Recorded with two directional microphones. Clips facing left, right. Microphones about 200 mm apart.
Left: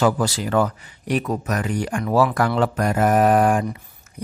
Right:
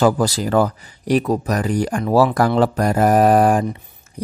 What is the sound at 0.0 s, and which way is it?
Speech, 40° right (ahead or behind).